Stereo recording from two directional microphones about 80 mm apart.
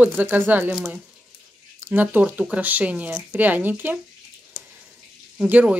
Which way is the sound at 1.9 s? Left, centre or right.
Right.